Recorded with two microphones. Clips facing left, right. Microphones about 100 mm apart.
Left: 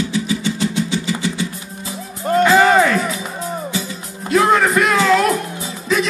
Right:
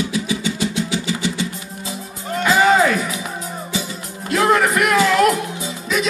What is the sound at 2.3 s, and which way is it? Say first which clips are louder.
Music: left 9 dB; 50° left (ahead or behind).